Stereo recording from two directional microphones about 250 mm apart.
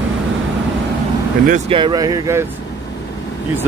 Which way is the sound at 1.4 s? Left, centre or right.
Right.